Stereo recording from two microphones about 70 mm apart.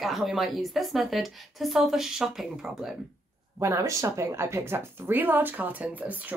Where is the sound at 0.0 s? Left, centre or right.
Centre.